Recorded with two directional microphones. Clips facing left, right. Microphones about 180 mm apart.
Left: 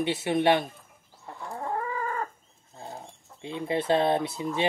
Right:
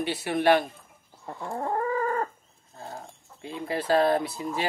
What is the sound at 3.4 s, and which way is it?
Speech, 25° left (ahead or behind).